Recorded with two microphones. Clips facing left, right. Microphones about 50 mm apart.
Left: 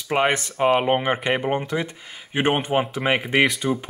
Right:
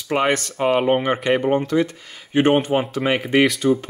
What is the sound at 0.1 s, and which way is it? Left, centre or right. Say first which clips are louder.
Speech: right 1 dB; centre.